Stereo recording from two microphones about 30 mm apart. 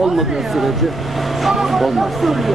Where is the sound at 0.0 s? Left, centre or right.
Centre.